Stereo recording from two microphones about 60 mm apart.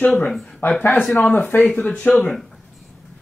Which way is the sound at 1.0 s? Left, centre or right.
Centre.